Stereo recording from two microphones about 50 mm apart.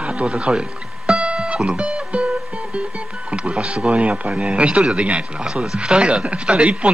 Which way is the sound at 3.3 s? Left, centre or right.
Right.